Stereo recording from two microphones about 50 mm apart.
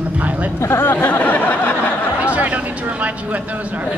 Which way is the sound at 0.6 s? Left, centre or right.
Left.